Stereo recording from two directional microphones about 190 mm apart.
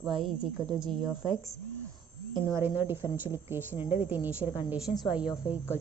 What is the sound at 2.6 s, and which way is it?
A woman's voice, 10° right (ahead or behind).